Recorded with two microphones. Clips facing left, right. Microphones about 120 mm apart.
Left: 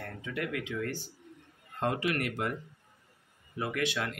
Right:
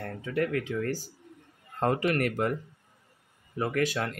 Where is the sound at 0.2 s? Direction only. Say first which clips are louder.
Right 7 dB; 40° right (ahead or behind).